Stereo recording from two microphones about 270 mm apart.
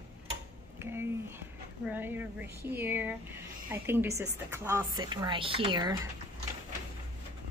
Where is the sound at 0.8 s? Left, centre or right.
Centre.